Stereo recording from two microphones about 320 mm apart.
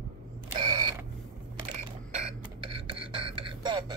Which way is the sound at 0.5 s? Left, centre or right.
Centre.